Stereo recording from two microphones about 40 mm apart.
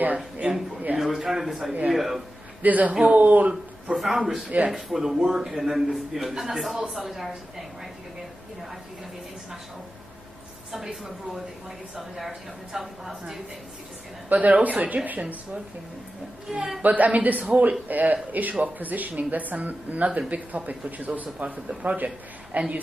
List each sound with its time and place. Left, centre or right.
0.0 s a man's voice: right
0.9 s a man's voice: centre
2.6 s a man's voice: right
3.9 s a man's voice: centre
10.7 s a man's voice: centre
12.7 s a man's voice: centre
14.3 s a man's voice: right
16.8 s a man's voice: right